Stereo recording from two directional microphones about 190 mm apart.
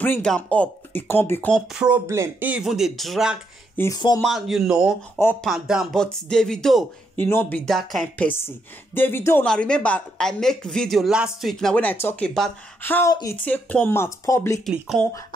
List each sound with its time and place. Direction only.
0.0 s a woman's voice: 5° left (ahead or behind)
1.7 s speech: 5° right (ahead or behind)
3.7 s speech: 15° left (ahead or behind)
4.2 s speech: centre (ahead or behind)
5.2 s a woman's voice: 10° left (ahead or behind)
5.5 s a woman's voice: centre (ahead or behind); by 14.6 s 15° left (ahead or behind)
14.7 s speech: centre (ahead or behind)